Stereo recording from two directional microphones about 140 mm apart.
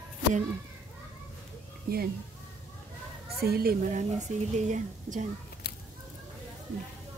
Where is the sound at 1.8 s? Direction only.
90° right.